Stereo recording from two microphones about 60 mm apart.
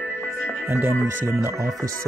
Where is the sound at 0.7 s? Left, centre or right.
Right.